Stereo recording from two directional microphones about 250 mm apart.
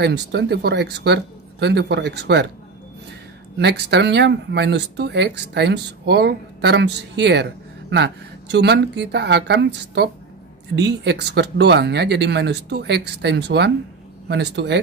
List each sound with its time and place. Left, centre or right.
0.0 s speech: right
3.5 s speech: right